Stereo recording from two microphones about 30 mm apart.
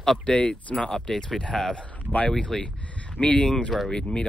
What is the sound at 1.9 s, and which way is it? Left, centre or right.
Speech, left.